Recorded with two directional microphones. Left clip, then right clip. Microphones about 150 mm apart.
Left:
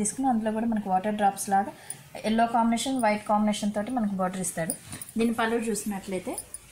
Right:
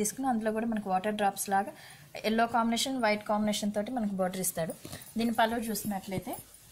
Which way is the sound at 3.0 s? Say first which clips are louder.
Left 5 dB; 20° right (ahead or behind).